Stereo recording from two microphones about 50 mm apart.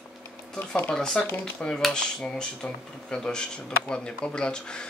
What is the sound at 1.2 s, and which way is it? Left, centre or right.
Speech, centre.